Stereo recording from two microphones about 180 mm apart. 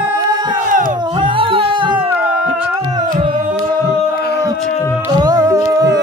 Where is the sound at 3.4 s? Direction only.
50° right (ahead or behind).